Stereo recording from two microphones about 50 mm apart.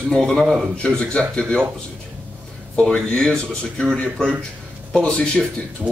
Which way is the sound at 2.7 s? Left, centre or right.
Left.